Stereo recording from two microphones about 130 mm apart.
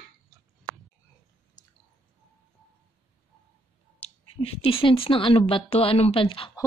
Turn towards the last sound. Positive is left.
turn(degrees=40)  # may be behind; listen again after turning